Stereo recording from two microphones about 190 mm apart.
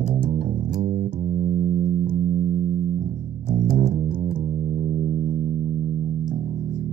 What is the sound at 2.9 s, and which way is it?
Music, 45° right (ahead or behind).